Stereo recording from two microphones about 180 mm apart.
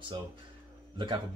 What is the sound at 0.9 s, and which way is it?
Speech, 25° right (ahead or behind).